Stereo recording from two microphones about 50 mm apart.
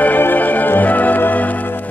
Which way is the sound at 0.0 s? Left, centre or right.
Left.